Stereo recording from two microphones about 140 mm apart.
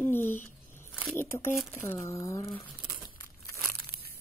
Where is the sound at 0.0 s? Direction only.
15° left (ahead or behind).